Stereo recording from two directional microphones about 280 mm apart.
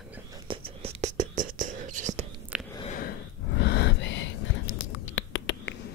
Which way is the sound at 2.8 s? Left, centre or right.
Left.